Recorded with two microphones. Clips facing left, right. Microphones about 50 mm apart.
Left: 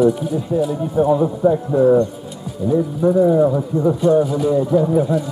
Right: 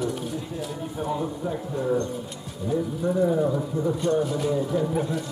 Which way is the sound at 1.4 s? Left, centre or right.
Left.